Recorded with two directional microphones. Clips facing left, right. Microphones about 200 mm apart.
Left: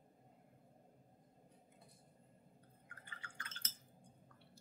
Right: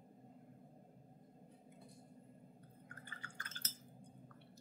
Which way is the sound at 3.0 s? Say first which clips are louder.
Left 1 dB; 40° right (ahead or behind).